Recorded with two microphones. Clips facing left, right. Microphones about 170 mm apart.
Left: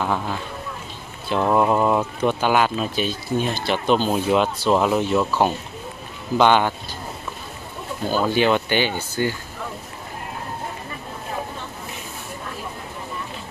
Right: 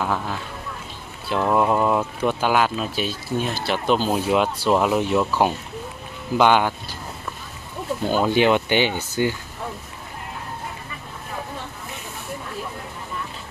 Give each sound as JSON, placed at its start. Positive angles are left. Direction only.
{"t": 0.0, "sound": "speech", "side_deg": 0}
{"t": 1.4, "sound": "speech", "side_deg": 5}
{"t": 8.1, "sound": "speech", "side_deg": -20}